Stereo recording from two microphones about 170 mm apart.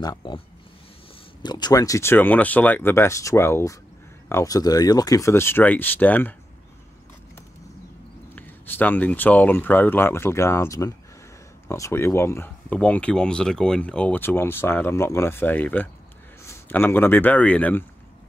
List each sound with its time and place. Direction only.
0.0 s speech: 25° left (ahead or behind)
1.4 s speech: 25° left (ahead or behind); by 6.3 s 10° left (ahead or behind)
8.4 s speech: 10° left (ahead or behind)